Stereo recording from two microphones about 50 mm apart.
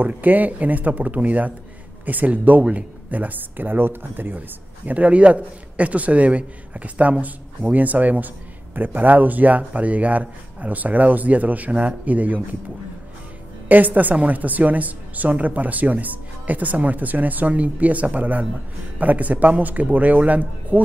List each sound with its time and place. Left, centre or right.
0.0 s a woman's voice: right
4.8 s a man's voice: right
13.7 s a woman's voice: right